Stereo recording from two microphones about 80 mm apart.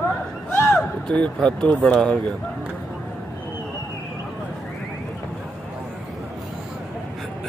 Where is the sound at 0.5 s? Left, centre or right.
Left.